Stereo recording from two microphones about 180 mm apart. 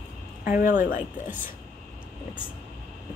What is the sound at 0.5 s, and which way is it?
Speech, 50° left (ahead or behind).